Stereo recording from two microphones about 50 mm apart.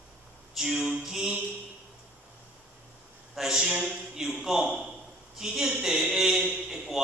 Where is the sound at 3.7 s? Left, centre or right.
Right.